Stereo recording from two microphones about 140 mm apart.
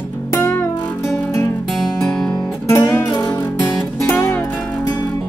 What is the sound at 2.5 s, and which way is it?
Music, 20° left (ahead or behind).